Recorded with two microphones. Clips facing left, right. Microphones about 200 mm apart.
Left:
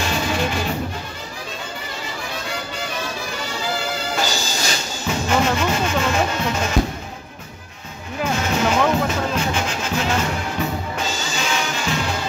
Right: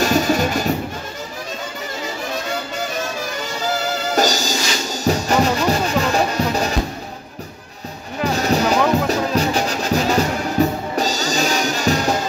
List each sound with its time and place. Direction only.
0.0 s music: 45° right (ahead or behind)
3.7 s music: 40° right (ahead or behind)
8.3 s music: 40° right (ahead or behind)